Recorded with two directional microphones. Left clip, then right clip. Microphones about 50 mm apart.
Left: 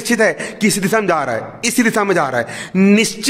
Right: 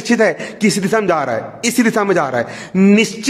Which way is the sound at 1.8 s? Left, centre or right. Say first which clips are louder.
Even; right.